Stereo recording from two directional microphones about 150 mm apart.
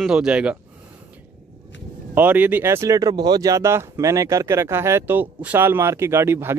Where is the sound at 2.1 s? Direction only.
10° right (ahead or behind).